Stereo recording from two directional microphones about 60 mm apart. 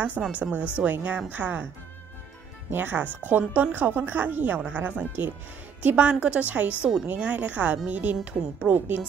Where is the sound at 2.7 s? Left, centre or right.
Right.